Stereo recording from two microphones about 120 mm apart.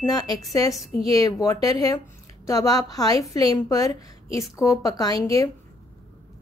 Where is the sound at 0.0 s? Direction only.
30° left (ahead or behind).